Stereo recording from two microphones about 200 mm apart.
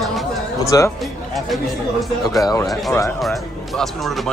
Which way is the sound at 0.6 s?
15° left (ahead or behind).